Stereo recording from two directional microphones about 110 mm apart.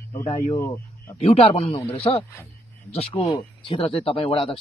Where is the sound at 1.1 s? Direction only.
70° left (ahead or behind).